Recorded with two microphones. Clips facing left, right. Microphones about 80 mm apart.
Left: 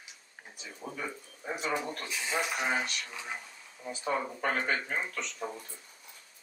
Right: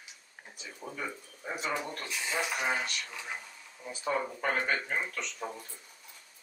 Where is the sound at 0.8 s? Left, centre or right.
Centre.